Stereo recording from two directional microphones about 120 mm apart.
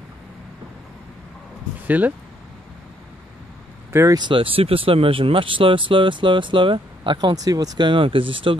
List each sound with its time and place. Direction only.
1.9 s speech: 15° right (ahead or behind)
3.9 s speech: 25° right (ahead or behind)
4.2 s speech: 45° right (ahead or behind)